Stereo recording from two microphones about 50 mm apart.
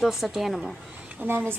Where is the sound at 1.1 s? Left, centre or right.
Right.